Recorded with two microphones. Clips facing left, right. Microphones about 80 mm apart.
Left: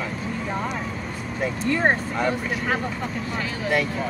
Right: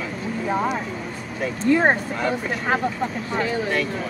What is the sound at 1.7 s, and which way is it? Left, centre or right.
Speech, centre.